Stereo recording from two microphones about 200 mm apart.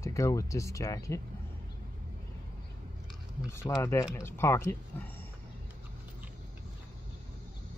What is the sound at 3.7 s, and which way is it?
Speech, 15° left (ahead or behind).